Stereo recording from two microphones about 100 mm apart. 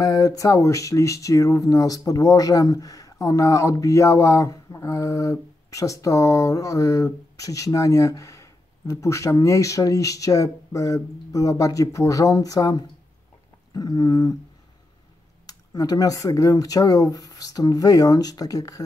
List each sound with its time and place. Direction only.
0.0 s speech: 35° left (ahead or behind)
15.4 s speech: 35° left (ahead or behind)